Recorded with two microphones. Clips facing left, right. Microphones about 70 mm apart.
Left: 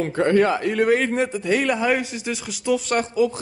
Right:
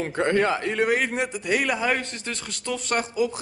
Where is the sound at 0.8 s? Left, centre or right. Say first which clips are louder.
Left 5 dB; centre.